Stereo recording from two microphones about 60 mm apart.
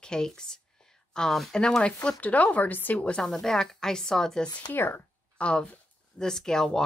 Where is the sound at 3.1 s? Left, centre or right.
Centre.